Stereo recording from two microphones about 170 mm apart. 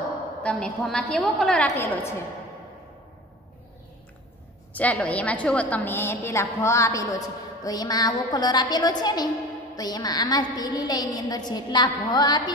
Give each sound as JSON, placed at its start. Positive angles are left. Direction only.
{"t": 0.4, "sound": "a woman's voice", "side_deg": 5}
{"t": 4.7, "sound": "a woman's voice", "side_deg": 10}